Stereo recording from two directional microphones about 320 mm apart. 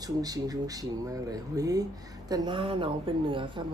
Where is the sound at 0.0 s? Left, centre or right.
Centre.